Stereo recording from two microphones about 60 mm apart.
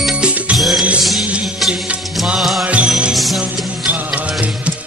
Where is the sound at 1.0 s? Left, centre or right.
Centre.